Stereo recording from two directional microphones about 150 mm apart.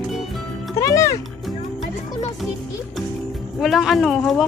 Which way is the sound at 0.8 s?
20° left (ahead or behind).